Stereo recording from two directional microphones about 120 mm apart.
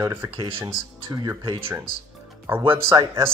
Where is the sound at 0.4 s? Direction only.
45° right (ahead or behind).